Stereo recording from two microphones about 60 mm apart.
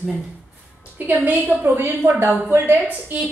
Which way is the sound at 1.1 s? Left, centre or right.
Right.